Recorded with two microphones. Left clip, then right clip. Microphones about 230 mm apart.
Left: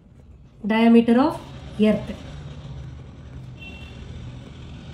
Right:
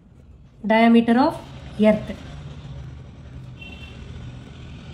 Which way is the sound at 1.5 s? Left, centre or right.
Centre.